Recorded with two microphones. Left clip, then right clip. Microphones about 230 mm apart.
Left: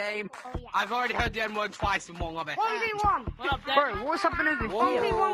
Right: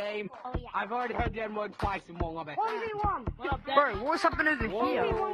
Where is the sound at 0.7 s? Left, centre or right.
Left.